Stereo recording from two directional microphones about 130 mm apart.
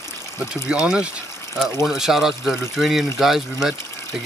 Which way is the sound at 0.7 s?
10° right (ahead or behind).